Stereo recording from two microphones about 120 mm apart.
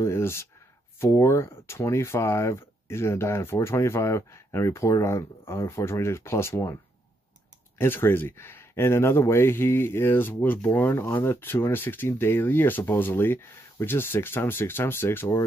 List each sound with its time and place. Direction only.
0.0 s speech: 20° left (ahead or behind)
7.8 s speech: 20° left (ahead or behind)